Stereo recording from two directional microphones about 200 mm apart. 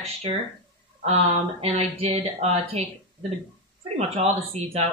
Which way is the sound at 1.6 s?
30° right (ahead or behind).